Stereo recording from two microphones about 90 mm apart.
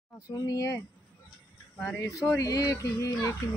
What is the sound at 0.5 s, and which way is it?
Speech, 40° left (ahead or behind).